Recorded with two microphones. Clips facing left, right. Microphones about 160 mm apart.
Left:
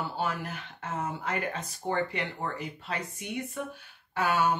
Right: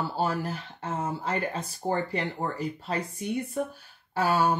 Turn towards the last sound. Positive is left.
turn(degrees=-35)  # may be behind; listen again after turning